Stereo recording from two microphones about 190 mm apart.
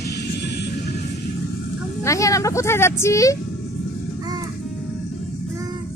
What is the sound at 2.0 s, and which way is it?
Speech, 15° left (ahead or behind).